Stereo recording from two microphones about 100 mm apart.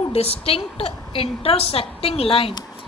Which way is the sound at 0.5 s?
75° left (ahead or behind).